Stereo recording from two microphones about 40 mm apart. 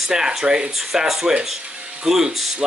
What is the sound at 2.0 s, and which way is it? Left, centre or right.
Speech, centre.